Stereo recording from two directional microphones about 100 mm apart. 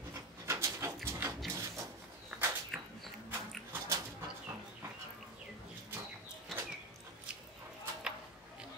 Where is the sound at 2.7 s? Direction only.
Centre (ahead or behind).